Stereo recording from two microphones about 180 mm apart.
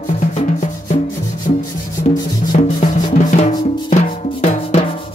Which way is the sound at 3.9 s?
40° left (ahead or behind).